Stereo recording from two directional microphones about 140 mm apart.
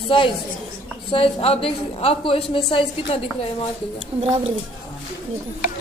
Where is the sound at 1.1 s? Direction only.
45° left (ahead or behind).